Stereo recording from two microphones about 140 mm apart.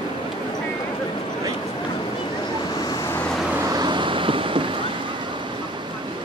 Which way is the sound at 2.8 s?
15° left (ahead or behind).